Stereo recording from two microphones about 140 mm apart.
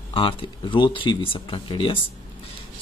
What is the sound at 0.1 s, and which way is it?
Speech, 35° left (ahead or behind).